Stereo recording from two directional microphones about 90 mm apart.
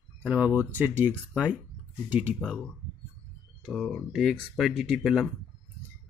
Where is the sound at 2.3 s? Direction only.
10° left (ahead or behind).